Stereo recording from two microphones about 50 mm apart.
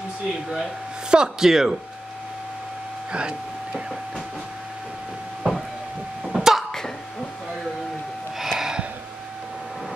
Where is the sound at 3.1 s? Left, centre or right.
Centre.